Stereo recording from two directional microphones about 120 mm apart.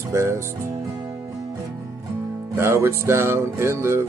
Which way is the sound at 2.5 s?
20° right (ahead or behind).